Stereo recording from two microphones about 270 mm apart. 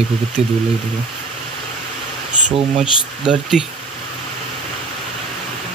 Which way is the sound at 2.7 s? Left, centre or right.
Centre.